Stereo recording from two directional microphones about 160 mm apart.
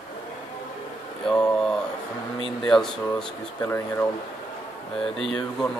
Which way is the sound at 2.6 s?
Centre (ahead or behind).